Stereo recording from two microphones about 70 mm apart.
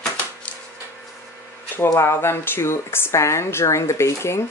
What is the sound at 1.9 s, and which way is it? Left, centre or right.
Speech, left.